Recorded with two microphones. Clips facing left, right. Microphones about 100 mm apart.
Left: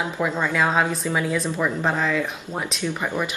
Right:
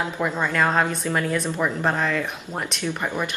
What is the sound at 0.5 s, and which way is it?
Speech, 5° left (ahead or behind).